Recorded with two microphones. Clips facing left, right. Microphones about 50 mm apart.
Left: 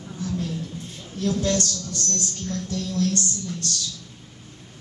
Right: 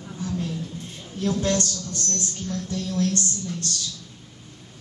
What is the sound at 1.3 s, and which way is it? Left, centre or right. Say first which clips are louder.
Speech: even; centre.